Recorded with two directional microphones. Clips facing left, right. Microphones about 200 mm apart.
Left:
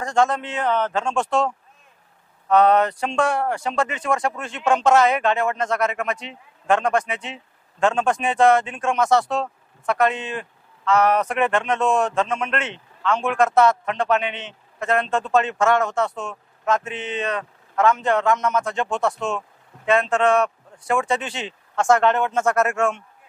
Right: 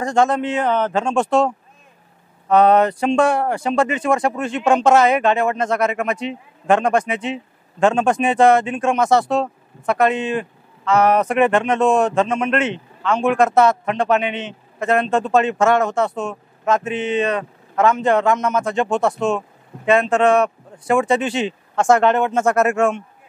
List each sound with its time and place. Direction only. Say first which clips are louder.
0.0 s a man's voice: right 3 dB; 10° right (ahead or behind)
2.5 s a man's voice: right 3 dB; 10° right (ahead or behind)